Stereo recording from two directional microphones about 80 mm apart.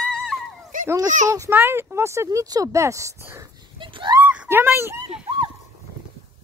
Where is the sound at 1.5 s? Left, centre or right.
Right.